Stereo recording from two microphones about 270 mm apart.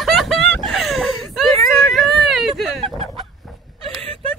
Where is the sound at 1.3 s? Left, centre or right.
Centre.